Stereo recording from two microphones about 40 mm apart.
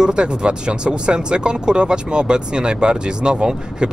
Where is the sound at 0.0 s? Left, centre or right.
Right.